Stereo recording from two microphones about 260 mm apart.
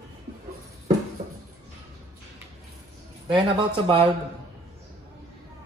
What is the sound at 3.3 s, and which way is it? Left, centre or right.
Speech, centre.